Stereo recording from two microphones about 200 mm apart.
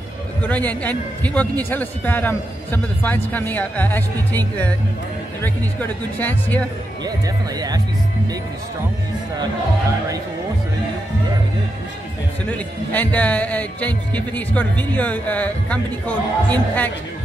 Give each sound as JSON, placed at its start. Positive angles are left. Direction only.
{"t": 0.4, "sound": "a man's voice", "side_deg": 10}
{"t": 12.4, "sound": "a man's voice", "side_deg": 10}